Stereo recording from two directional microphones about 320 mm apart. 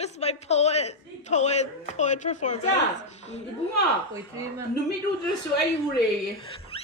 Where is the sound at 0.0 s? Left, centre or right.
Centre.